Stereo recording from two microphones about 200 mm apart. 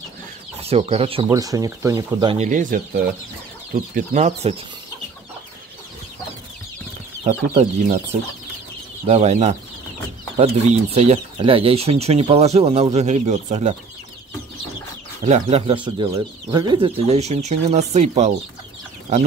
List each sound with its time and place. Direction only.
0.6 s speech: 30° right (ahead or behind)
1.3 s speech: 15° right (ahead or behind)
2.3 s speech: 35° right (ahead or behind)
3.7 s speech: 40° right (ahead or behind)
7.2 s speech: 30° right (ahead or behind)
9.0 s speech: 35° right (ahead or behind)
11.0 s speech: 30° right (ahead or behind)
15.2 s speech: 35° right (ahead or behind)